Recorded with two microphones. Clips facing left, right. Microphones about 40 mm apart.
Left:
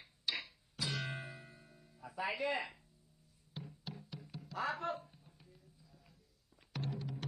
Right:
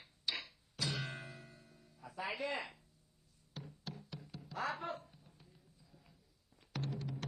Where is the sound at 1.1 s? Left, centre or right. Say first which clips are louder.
Left 2 dB; centre.